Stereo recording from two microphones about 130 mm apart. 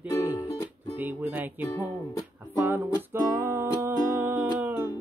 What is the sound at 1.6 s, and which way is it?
Speech, 25° left (ahead or behind).